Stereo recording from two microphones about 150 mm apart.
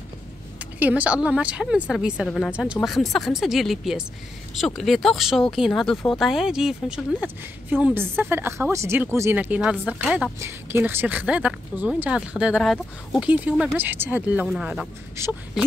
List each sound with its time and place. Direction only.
0.6 s a woman's voice: 10° right (ahead or behind)
2.2 s a woman's voice: 5° left (ahead or behind)
15.2 s a woman's voice: 15° right (ahead or behind)
15.6 s speech: 5° right (ahead or behind)